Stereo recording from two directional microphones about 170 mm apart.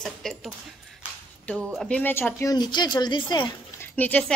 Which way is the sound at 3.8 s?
10° left (ahead or behind).